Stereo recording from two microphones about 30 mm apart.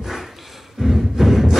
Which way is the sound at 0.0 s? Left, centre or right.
Centre.